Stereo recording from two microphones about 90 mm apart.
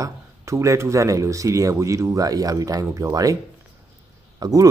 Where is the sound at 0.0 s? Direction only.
35° right (ahead or behind).